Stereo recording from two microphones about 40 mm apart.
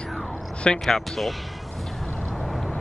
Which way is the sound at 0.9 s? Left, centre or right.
Centre.